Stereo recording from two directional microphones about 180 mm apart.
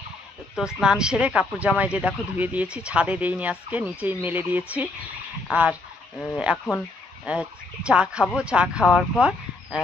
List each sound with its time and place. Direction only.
0.6 s speech: 5° right (ahead or behind)